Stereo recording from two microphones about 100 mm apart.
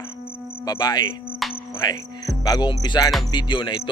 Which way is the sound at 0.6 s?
40° left (ahead or behind).